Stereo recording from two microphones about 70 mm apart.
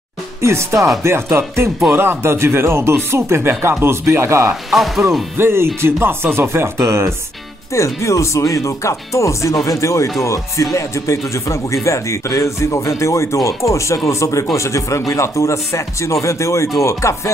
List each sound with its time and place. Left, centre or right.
0.4 s speech: right
4.6 s speech: centre
5.4 s speech: right
7.7 s speech: left